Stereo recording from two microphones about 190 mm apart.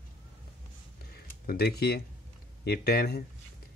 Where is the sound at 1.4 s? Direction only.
55° left (ahead or behind).